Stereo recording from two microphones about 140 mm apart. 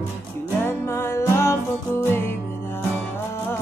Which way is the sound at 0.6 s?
15° left (ahead or behind).